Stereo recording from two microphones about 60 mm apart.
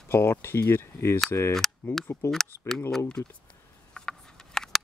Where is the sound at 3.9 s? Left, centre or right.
Centre.